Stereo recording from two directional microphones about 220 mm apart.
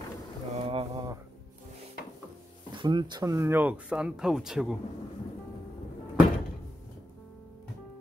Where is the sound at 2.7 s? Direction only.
20° right (ahead or behind); by 4.7 s centre (ahead or behind).